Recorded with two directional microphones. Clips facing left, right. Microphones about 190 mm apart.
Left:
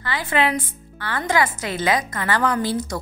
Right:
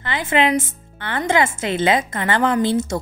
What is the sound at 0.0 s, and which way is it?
A woman's voice, 20° right (ahead or behind).